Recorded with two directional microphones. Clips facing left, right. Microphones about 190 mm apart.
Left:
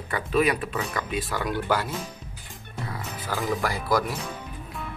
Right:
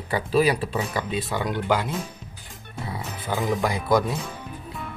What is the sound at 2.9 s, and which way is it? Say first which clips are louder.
Music: right 3 dB; 20° right (ahead or behind).